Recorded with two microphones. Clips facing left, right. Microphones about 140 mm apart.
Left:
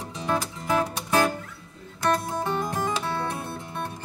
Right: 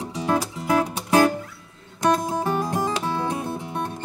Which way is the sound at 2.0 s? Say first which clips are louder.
Right 4 dB; 15° right (ahead or behind).